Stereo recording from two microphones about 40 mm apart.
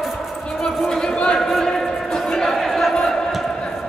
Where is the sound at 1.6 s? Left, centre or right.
Centre.